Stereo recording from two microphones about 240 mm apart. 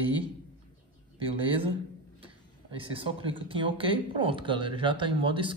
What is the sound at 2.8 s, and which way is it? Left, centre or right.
Speech, right.